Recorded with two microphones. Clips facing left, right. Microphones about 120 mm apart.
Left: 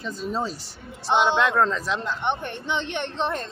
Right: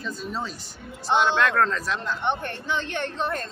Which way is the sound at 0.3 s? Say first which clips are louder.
Left 4 dB; 35° left (ahead or behind).